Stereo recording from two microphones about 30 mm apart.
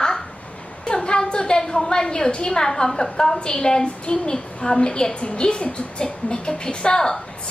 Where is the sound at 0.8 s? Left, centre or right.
Left.